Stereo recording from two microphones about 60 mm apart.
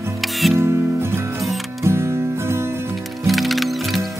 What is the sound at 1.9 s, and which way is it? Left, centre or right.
Music, right.